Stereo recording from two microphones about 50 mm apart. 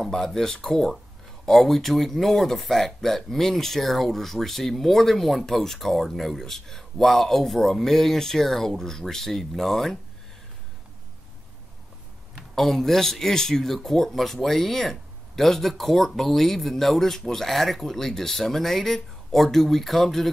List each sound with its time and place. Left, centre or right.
0.0 s speech: centre
12.5 s speech: centre